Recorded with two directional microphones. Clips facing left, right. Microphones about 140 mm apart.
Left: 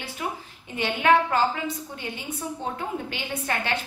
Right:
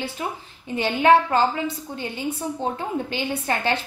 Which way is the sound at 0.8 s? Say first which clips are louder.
Right 4 dB; 30° right (ahead or behind).